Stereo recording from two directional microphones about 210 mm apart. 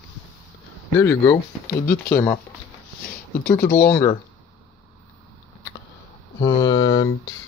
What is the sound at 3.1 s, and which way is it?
Speech, 45° left (ahead or behind).